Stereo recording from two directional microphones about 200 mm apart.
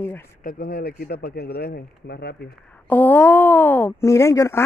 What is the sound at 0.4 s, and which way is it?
Speech, 50° left (ahead or behind).